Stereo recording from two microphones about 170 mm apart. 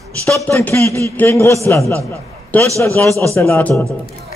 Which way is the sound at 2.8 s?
15° left (ahead or behind).